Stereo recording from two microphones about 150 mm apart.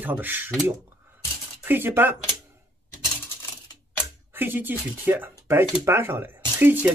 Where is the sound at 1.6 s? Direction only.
15° right (ahead or behind).